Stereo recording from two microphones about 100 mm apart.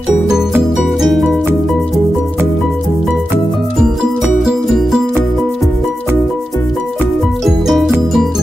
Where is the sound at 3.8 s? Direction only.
5° right (ahead or behind).